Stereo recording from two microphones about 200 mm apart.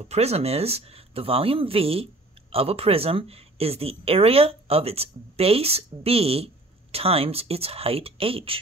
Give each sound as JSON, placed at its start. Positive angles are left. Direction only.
{"t": 0.0, "sound": "speech", "side_deg": -30}